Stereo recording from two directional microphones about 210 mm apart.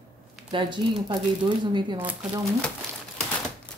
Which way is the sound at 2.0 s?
10° right (ahead or behind).